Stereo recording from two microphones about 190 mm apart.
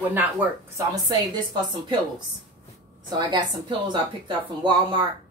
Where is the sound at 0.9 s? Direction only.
20° right (ahead or behind).